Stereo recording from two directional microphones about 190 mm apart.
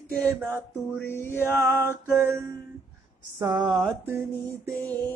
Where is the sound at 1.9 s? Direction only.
10° right (ahead or behind).